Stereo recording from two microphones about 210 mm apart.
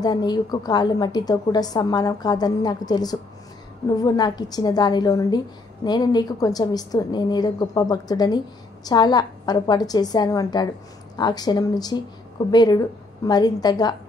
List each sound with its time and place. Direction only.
0.0 s a woman's voice: 20° left (ahead or behind)